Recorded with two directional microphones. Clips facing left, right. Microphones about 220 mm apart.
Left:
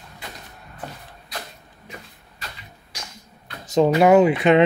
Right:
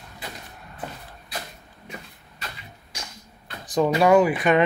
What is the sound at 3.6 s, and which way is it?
Speech, 25° left (ahead or behind).